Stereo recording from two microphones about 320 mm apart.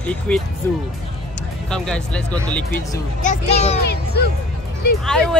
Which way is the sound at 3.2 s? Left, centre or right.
Left.